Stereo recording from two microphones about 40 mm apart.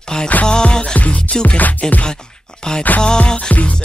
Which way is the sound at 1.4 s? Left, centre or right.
Left.